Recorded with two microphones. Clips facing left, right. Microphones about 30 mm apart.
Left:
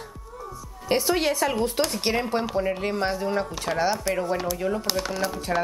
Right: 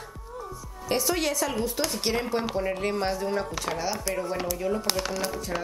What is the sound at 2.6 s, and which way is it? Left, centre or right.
Speech, centre.